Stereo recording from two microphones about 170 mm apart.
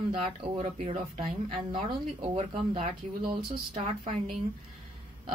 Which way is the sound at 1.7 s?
30° right (ahead or behind).